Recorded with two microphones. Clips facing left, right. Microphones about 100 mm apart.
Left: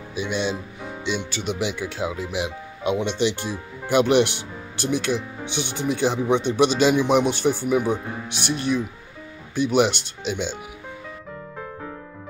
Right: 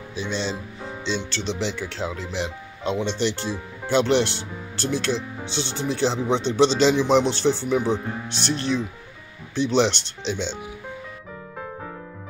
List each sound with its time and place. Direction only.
0.1 s speech: 10° left (ahead or behind)